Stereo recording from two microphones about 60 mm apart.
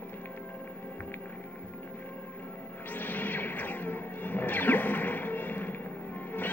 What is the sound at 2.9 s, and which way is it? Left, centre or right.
Music, left.